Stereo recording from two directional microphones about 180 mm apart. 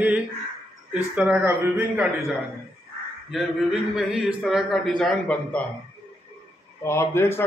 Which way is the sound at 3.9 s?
5° right (ahead or behind).